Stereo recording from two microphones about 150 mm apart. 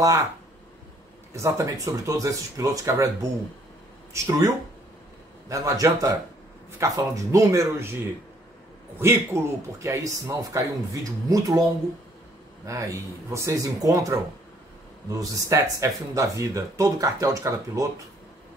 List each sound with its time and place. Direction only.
1.3 s speech: 20° right (ahead or behind)
9.0 s speech: 15° right (ahead or behind)
12.6 s speech: 20° right (ahead or behind)